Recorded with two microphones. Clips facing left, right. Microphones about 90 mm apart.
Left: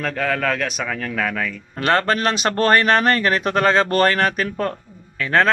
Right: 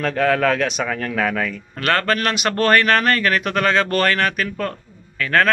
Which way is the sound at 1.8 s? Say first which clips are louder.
Left 1 dB; 25° left (ahead or behind).